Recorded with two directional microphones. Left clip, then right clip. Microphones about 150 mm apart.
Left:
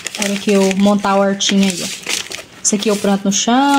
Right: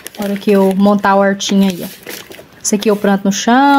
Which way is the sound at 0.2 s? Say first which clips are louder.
Right 3 dB; 30° right (ahead or behind).